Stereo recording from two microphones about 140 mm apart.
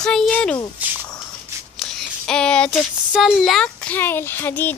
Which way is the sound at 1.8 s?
5° left (ahead or behind).